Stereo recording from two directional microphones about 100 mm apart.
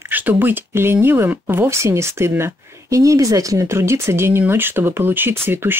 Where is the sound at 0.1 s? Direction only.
20° right (ahead or behind).